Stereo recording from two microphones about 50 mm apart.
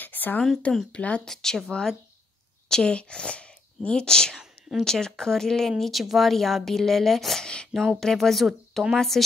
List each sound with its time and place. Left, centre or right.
0.0 s a sound: left
0.9 s speech: left
1.2 s speech: centre
2.7 s speech: centre
4.4 s a sound: centre
4.8 s speech: centre
5.7 s speech: centre
7.4 s speech: centre